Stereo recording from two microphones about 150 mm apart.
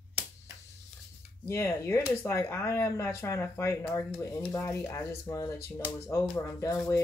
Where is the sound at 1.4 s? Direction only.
15° left (ahead or behind).